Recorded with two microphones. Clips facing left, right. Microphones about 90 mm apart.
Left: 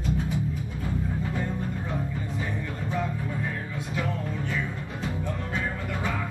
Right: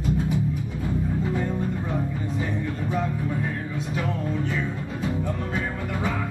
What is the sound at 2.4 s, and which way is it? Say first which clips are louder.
Music: right 6 dB; 20° right (ahead or behind).